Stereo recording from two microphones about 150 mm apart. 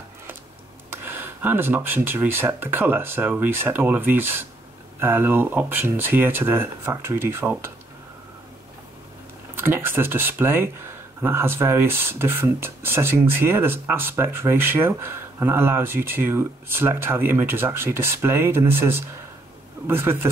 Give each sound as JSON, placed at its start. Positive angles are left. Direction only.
{"t": 0.8, "sound": "speech", "side_deg": -15}
{"t": 9.6, "sound": "speech", "side_deg": -15}